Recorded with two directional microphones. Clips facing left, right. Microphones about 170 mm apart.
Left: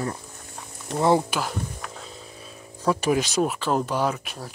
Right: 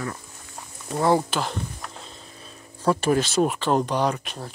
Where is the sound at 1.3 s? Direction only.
5° left (ahead or behind).